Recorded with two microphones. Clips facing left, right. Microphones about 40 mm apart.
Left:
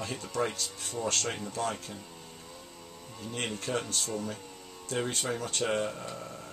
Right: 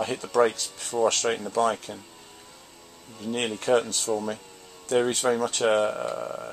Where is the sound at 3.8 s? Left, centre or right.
Right.